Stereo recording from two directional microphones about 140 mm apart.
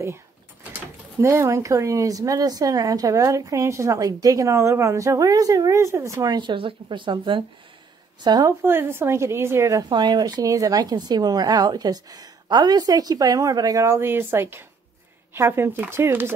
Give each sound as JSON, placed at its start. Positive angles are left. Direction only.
{"t": 1.2, "sound": "speech", "side_deg": -20}
{"t": 8.6, "sound": "speech", "side_deg": -15}